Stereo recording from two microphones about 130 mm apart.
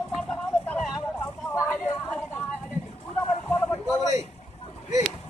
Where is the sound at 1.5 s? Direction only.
20° left (ahead or behind).